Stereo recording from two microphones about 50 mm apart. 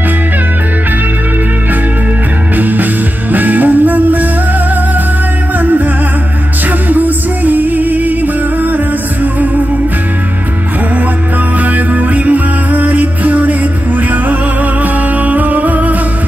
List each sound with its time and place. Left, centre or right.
2.5 s music: right
5.6 s music: right
6.9 s music: right
11.6 s music: right